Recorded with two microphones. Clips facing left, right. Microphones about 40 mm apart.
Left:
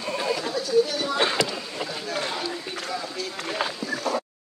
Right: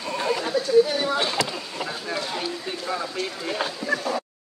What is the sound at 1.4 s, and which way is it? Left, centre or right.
Speech, centre.